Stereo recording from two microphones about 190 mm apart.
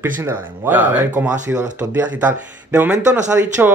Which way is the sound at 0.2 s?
10° right (ahead or behind).